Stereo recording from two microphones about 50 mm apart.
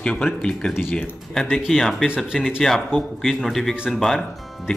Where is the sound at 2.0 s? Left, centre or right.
Centre.